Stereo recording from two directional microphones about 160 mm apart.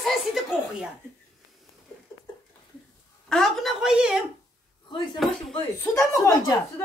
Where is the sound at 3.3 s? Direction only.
Centre (ahead or behind).